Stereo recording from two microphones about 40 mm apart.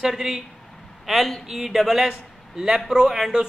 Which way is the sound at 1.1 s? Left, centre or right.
Centre.